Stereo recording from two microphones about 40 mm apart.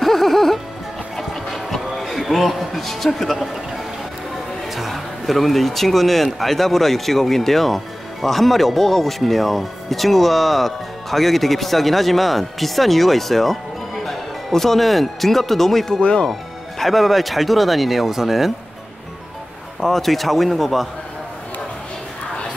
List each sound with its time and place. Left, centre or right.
0.0 s music: centre
4.6 s speech: centre
16.0 s speech: left
16.7 s speech: centre
19.8 s speech: centre